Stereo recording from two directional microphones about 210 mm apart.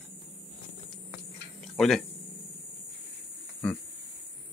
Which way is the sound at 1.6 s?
Centre (ahead or behind).